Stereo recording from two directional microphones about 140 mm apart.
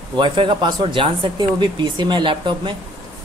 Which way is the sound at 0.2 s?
35° right (ahead or behind).